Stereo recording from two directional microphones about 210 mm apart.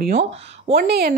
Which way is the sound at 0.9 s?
50° right (ahead or behind).